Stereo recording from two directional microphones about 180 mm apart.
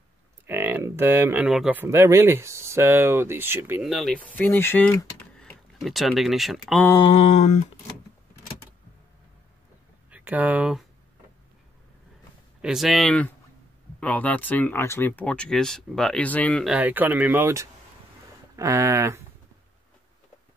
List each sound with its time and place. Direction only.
0.5 s speech: 10° right (ahead or behind)
3.9 s speech: 5° left (ahead or behind)
7.1 s a sound: 35° left (ahead or behind)
10.1 s speech: 10° right (ahead or behind)
12.6 s speech: centre (ahead or behind)